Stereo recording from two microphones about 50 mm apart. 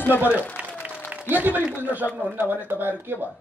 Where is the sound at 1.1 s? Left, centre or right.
Right.